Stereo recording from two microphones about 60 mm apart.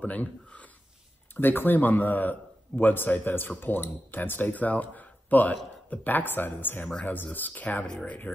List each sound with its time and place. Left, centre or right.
0.0 s a sound: left
1.3 s a man's voice: left
7.8 s speech: centre